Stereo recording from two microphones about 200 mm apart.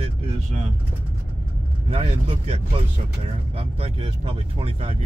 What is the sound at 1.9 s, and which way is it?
Speech, 30° right (ahead or behind).